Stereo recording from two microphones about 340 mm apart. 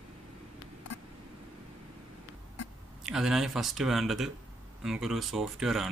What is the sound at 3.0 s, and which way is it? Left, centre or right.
Speech, centre.